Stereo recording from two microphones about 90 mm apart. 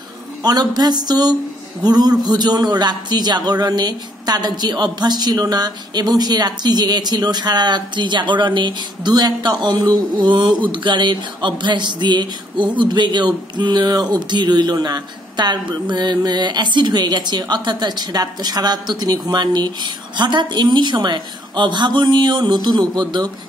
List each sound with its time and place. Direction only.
0.4 s a man's voice: 50° right (ahead or behind)